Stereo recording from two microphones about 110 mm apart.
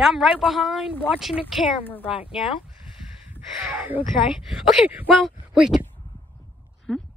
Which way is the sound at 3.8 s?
15° right (ahead or behind).